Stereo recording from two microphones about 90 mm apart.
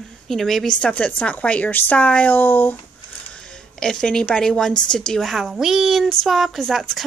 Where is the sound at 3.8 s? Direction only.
5° left (ahead or behind).